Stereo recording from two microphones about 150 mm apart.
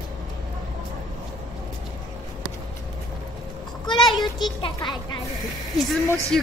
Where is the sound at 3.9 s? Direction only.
30° left (ahead or behind).